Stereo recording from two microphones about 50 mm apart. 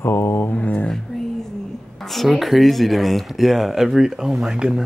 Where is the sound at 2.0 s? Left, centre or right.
Centre.